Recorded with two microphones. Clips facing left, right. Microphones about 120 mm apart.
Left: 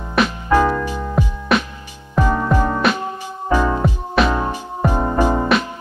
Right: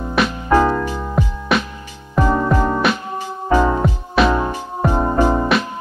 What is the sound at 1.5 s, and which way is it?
Music, centre (ahead or behind).